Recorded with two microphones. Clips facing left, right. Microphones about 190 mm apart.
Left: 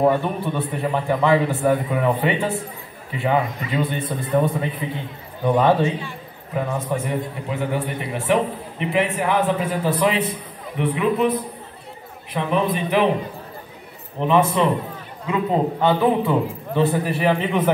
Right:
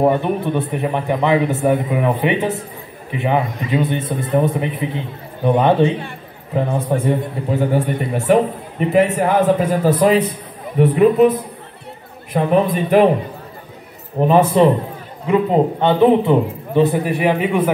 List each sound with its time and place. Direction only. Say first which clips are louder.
0.0 s a man's voice: right 3 dB; 15° right (ahead or behind); by 13.1 s 45° right (ahead or behind)
14.2 s a man's voice: right 6 dB; 40° right (ahead or behind); by 17.6 s 10° right (ahead or behind)